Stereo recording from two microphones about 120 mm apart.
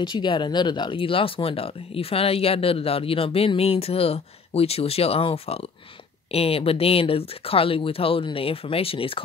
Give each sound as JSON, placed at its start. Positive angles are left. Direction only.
{"t": 0.0, "sound": "speech", "side_deg": 40}